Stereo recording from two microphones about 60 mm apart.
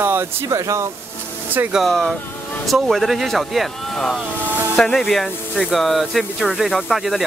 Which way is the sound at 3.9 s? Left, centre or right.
Centre.